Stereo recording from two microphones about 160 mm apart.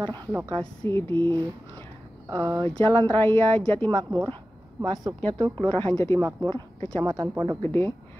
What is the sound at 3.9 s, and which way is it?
Speech, 25° right (ahead or behind).